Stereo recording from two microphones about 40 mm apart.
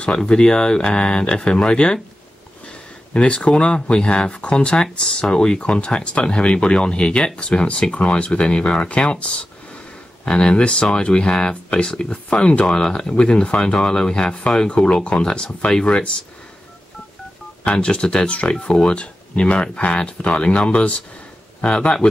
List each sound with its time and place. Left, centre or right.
0.0 s speech: left
3.2 s speech: left
17.6 s speech: left